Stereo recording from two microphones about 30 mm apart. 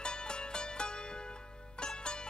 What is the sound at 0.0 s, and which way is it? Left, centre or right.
Music, left.